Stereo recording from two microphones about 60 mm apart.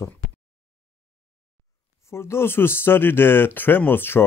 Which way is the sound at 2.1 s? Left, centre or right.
Left.